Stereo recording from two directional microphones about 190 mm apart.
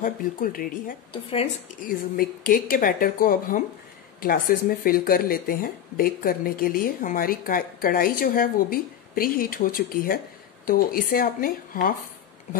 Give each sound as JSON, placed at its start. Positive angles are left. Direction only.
{"t": 0.0, "sound": "speech", "side_deg": 45}
{"t": 1.1, "sound": "speech", "side_deg": 30}
{"t": 1.9, "sound": "speech", "side_deg": 50}